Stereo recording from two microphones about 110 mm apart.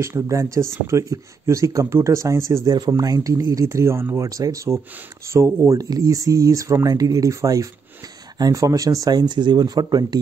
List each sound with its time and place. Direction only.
0.0 s speech: 25° right (ahead or behind)